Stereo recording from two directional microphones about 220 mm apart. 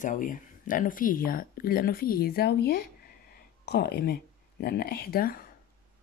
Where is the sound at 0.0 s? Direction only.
35° left (ahead or behind).